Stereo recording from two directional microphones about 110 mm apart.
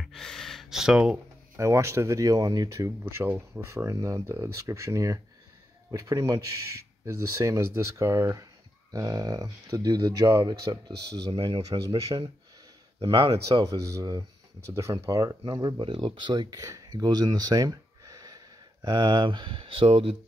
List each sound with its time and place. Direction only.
0.0 s gasp: 5° left (ahead or behind)
1.6 s speech: 25° right (ahead or behind)
3.0 s speech: 20° right (ahead or behind)
11.3 s speech: 50° right (ahead or behind)
13.0 s speech: 50° right (ahead or behind)
13.7 s speech: 30° right (ahead or behind); by 20.2 s 55° right (ahead or behind)